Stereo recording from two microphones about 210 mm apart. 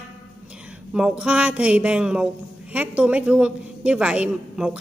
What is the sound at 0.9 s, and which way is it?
A woman's voice, 5° right (ahead or behind).